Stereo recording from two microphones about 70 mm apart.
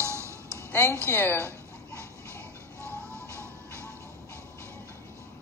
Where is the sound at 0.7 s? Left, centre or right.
Left.